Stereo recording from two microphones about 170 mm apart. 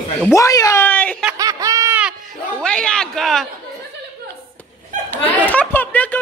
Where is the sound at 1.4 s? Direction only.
20° right (ahead or behind).